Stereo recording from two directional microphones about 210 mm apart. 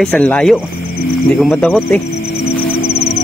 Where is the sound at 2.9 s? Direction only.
30° left (ahead or behind).